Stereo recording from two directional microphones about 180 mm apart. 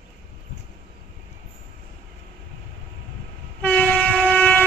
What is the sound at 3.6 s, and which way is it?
Train, 5° left (ahead or behind).